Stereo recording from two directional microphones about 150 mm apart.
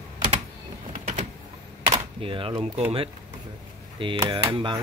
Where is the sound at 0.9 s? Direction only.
55° right (ahead or behind).